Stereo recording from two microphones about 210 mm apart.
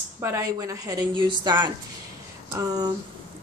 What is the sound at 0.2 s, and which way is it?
Speech, 15° right (ahead or behind).